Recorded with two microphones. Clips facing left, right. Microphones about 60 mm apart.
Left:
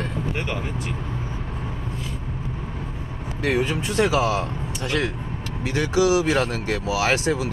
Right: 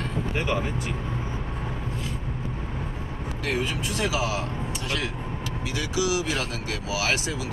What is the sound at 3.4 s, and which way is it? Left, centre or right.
Speech, left.